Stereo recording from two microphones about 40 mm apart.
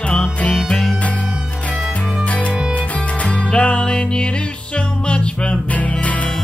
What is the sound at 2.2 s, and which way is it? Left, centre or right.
Music, left.